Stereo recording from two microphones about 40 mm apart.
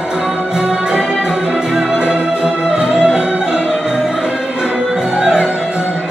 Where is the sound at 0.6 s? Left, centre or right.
Centre.